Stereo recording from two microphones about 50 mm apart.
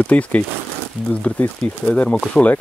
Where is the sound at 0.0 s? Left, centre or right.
Left.